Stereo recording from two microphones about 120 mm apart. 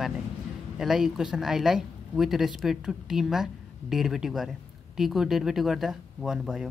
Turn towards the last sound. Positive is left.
turn(degrees=-5)  # may be behind; listen again after turning